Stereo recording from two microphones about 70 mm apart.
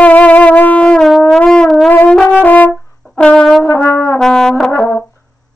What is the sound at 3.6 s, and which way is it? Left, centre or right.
Brass instrument, left.